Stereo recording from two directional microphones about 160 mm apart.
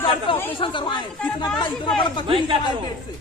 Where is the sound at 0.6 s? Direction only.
30° left (ahead or behind).